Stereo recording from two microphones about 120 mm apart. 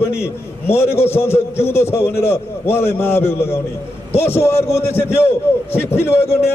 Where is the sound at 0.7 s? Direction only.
20° left (ahead or behind).